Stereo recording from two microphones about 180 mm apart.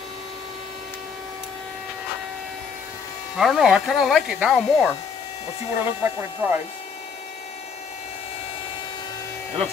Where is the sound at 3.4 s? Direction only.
Centre (ahead or behind).